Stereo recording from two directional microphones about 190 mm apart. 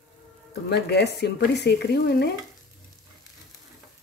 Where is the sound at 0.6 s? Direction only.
60° left (ahead or behind).